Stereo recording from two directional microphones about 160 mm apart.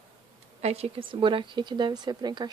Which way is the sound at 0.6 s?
40° right (ahead or behind).